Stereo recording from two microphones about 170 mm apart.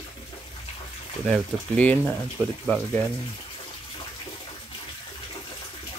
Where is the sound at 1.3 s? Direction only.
10° left (ahead or behind).